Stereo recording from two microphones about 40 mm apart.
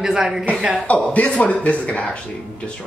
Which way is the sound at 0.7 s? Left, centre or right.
Left.